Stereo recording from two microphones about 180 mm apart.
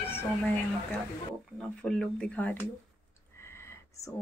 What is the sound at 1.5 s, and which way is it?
Speech, 5° left (ahead or behind).